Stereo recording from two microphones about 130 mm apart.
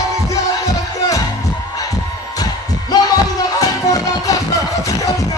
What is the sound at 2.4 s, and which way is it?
Music, 30° left (ahead or behind).